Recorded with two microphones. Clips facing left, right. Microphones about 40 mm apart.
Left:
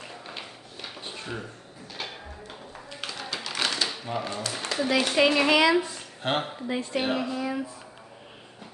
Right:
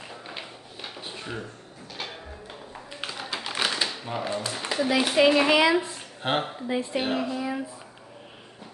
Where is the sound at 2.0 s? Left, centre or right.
Centre.